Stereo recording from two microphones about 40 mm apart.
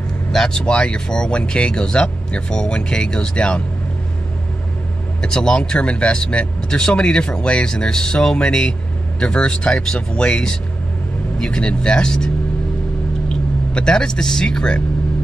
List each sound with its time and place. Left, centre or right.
0.3 s speech: centre
0.7 s speech: left
5.2 s speech: left
13.7 s speech: centre